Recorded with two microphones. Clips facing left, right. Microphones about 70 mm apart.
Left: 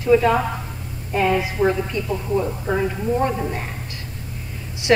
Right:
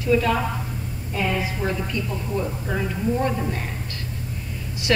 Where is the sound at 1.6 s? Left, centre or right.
Left.